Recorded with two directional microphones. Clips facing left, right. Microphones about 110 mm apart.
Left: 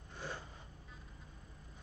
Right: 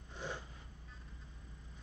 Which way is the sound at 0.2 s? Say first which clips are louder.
Right 1 dB; 20° right (ahead or behind).